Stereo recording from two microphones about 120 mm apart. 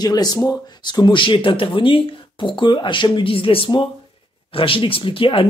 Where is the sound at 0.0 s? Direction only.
35° left (ahead or behind).